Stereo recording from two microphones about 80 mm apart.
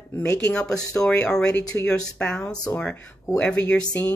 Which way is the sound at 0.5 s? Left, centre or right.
Centre.